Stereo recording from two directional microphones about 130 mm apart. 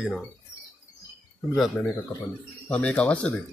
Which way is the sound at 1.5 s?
Centre (ahead or behind).